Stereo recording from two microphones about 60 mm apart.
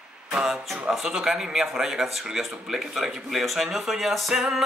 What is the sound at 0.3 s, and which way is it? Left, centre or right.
Speech, centre.